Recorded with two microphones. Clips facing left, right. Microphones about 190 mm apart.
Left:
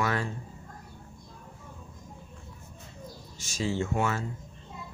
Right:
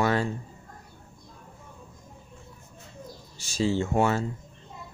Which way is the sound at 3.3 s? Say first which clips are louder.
Right 4 dB; 35° right (ahead or behind).